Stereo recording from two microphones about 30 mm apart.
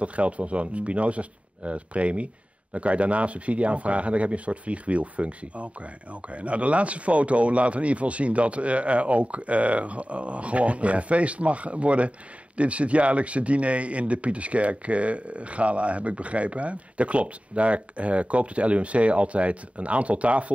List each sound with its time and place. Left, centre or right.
0.0 s speech: right